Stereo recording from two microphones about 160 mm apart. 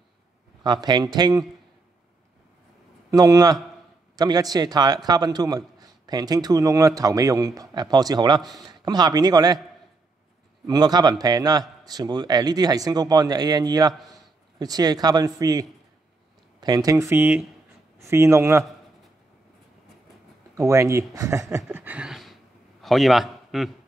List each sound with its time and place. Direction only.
0.7 s a man's voice: 25° right (ahead or behind)
3.1 s a man's voice: 20° right (ahead or behind)
10.7 s a man's voice: 25° right (ahead or behind)
20.5 s speech: 20° right (ahead or behind); by 23.7 s centre (ahead or behind)